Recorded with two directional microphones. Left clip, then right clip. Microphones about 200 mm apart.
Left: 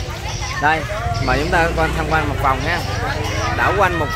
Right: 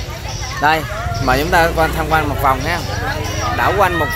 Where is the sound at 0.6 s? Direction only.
25° right (ahead or behind).